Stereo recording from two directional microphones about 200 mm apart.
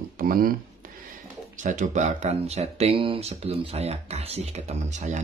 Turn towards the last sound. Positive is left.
turn(degrees=-35)  # may be behind; listen again after turning